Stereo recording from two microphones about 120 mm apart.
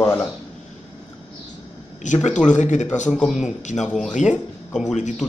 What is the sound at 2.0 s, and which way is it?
Speech, 90° left.